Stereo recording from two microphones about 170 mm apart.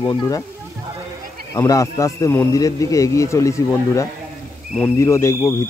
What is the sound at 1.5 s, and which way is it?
A man's voice, 20° left (ahead or behind).